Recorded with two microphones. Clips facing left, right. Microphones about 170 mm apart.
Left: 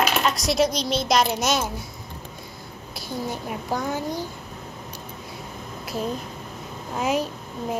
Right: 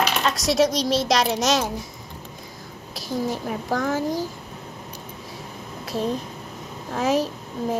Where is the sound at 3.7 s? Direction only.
90° right.